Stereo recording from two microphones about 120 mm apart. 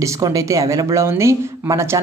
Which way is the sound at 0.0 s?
30° right (ahead or behind).